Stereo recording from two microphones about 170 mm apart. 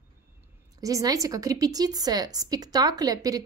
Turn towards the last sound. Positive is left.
turn(degrees=-20)  # may be behind; listen again after turning